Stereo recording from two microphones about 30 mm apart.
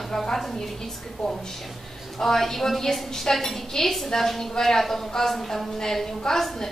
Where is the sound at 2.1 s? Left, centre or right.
Centre.